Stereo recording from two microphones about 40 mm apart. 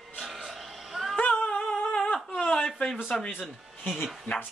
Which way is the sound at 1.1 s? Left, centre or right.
Left.